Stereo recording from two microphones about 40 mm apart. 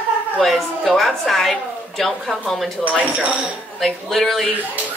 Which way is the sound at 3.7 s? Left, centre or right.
Centre.